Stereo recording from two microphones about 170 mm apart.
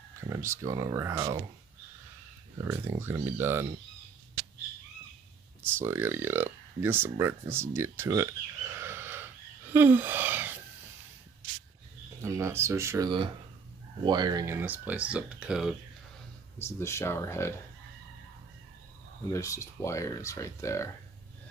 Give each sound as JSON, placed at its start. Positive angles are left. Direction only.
{"t": 0.3, "sound": "speech", "side_deg": -15}
{"t": 2.6, "sound": "speech", "side_deg": -15}
{"t": 5.6, "sound": "speech", "side_deg": -15}
{"t": 12.2, "sound": "speech", "side_deg": -15}
{"t": 16.5, "sound": "speech", "side_deg": 15}
{"t": 19.3, "sound": "speech", "side_deg": 20}